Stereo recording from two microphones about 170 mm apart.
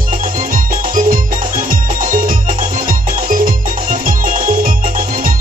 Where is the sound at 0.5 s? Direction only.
55° right (ahead or behind).